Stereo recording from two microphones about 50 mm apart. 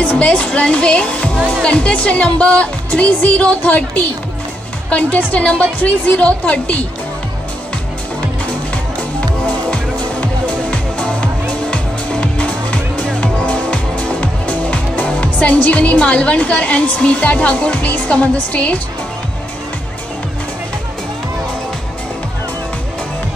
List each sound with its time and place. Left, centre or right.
0.0 s a woman's voice: left
10.2 s music: left
15.0 s a woman's voice: left